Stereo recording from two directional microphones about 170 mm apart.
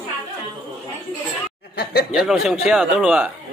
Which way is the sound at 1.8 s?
70° left (ahead or behind).